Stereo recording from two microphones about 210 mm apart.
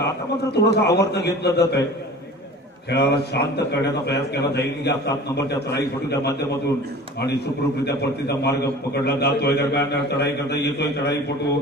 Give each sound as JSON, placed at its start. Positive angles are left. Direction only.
{"t": 0.0, "sound": "a man's voice", "side_deg": 50}
{"t": 2.9, "sound": "a man's voice", "side_deg": 50}
{"t": 7.8, "sound": "a man's voice", "side_deg": 50}